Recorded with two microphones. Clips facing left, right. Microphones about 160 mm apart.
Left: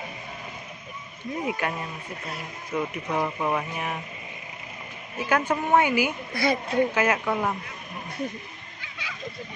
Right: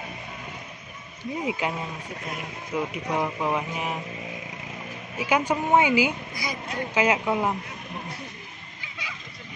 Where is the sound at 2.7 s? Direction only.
10° right (ahead or behind).